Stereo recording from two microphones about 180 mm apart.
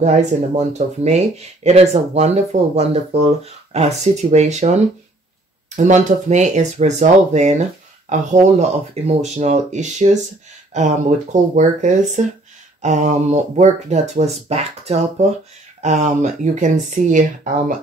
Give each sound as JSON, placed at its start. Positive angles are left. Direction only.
{"t": 0.0, "sound": "speech", "side_deg": -40}
{"t": 5.8, "sound": "speech", "side_deg": -40}